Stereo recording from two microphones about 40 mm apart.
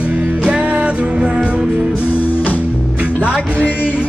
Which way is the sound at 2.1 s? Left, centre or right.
Left.